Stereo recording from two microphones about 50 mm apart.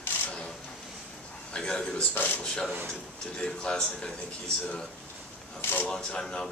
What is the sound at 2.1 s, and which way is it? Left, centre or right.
Speech, left.